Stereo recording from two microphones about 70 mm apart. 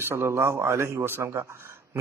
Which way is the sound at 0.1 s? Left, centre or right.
Right.